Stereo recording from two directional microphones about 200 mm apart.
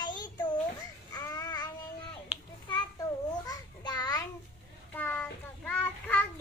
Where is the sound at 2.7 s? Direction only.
20° left (ahead or behind).